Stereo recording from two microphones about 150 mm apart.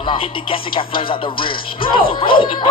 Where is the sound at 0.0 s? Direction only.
35° left (ahead or behind).